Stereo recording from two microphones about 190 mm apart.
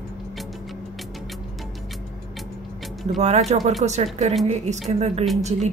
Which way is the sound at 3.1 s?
35° right (ahead or behind).